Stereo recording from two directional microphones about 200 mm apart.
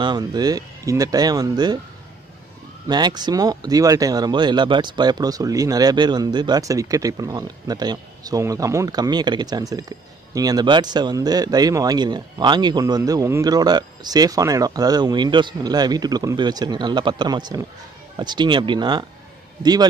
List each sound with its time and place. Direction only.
0.0 s speech: 20° right (ahead or behind)
2.9 s speech: 20° right (ahead or behind)